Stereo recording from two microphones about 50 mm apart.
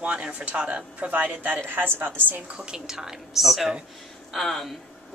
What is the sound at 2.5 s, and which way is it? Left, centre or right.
A woman's voice, centre.